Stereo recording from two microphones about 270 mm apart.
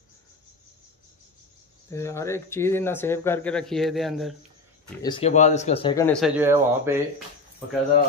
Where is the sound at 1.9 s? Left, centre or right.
Centre.